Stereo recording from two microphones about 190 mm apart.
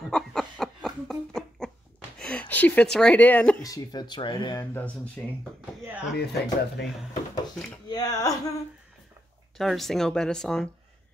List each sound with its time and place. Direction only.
0.1 s a sound: centre (ahead or behind)
2.1 s speech: 5° left (ahead or behind)
3.7 s speech: 20° left (ahead or behind)
4.7 s speech: 5° left (ahead or behind)
6.1 s speech: 60° left (ahead or behind)
7.9 s speech: 20° left (ahead or behind)
9.6 s speech: centre (ahead or behind)